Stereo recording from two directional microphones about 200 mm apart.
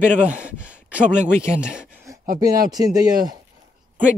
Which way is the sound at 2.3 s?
20° right (ahead or behind).